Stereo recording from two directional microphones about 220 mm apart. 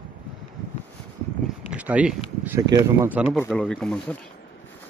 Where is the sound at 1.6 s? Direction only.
5° right (ahead or behind).